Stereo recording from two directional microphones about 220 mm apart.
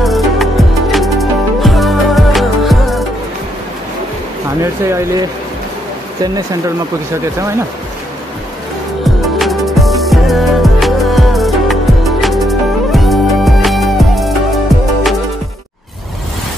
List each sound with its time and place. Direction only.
0.0 s music: centre (ahead or behind)
4.6 s speech: 15° right (ahead or behind)
6.2 s speech: 15° right (ahead or behind)
9.0 s music: centre (ahead or behind)